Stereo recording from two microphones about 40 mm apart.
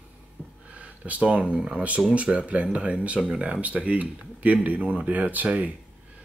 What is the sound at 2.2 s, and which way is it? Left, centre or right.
Speech, right.